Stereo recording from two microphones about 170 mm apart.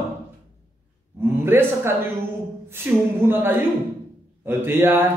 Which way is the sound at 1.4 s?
15° right (ahead or behind).